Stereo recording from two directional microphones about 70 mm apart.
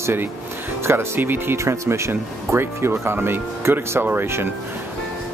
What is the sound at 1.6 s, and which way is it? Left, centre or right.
Speech, right.